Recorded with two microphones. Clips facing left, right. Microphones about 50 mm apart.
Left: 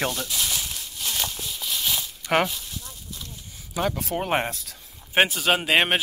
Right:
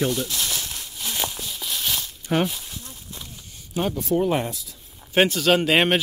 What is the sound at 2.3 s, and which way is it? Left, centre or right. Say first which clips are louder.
Speech: left 1 dB; left.